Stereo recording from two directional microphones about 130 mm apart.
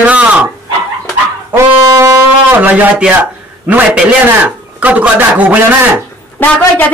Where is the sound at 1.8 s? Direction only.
25° right (ahead or behind).